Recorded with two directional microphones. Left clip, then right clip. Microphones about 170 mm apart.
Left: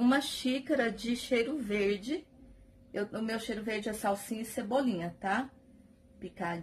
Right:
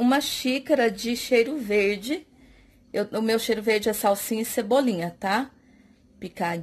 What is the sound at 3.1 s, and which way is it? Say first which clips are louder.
Speech: right 12 dB; 50° right (ahead or behind).